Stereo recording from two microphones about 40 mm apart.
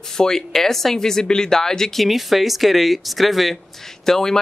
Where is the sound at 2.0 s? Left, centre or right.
Centre.